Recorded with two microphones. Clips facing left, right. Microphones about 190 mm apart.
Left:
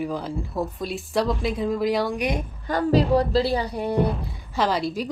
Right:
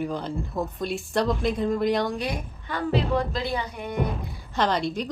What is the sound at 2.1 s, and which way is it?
Speech, 20° left (ahead or behind).